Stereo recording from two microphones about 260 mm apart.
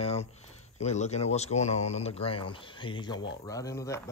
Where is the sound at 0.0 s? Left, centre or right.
Left.